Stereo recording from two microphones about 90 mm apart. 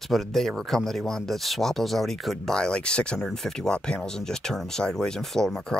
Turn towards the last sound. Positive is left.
turn(degrees=5)  # may be behind; listen again after turning